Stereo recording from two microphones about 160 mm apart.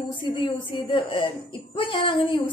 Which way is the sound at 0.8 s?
30° left (ahead or behind).